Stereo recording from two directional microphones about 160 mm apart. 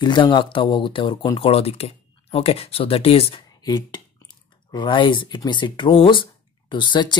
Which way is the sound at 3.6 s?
25° left (ahead or behind).